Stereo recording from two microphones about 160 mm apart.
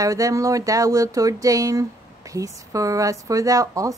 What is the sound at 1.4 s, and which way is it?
Music, 20° right (ahead or behind).